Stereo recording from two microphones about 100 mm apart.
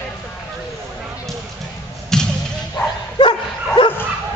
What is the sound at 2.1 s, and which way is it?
Thump, 5° left (ahead or behind).